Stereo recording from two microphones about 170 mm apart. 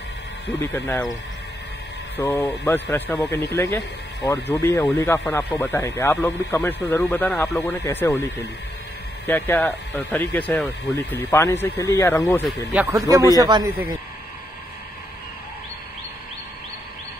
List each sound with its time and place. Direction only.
0.6 s speech: 15° left (ahead or behind)
2.1 s speech: 15° left (ahead or behind)
7.8 s speech: 15° left (ahead or behind)
12.7 s a man's voice: 15° right (ahead or behind)